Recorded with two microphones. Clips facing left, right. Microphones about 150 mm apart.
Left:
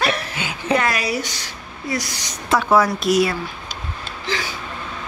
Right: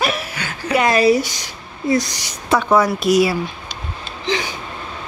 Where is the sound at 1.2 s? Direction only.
15° right (ahead or behind).